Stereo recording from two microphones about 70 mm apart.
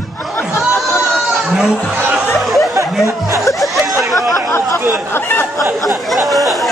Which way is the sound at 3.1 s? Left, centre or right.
Right.